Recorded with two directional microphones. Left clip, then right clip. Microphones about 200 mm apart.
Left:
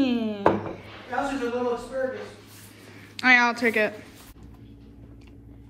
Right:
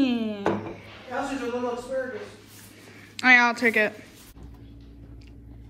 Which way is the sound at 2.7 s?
Centre (ahead or behind).